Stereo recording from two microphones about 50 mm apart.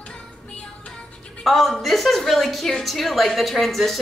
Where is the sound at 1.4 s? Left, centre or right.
Centre.